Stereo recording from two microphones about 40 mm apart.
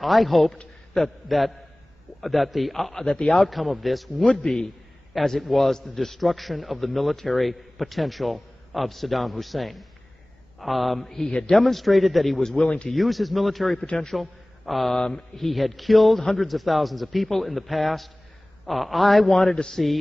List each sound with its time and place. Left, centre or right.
0.0 s a man's voice: centre
3.3 s a man's voice: centre
4.2 s a man's voice: left
5.1 s a man's voice: centre
11.1 s a man's voice: centre
11.6 s a man's voice: centre
12.4 s a man's voice: centre
12.9 s a man's voice: centre
13.8 s a man's voice: centre
14.1 s a man's voice: centre
15.0 s a man's voice: centre
19.5 s a man's voice: left